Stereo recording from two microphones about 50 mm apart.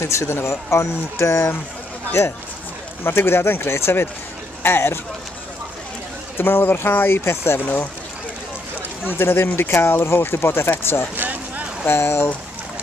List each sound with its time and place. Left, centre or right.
0.0 s speech: left
3.0 s speech: left
6.3 s speech: left
7.6 s speech: left
9.0 s speech: left
11.1 s a sound: right
11.8 s speech: left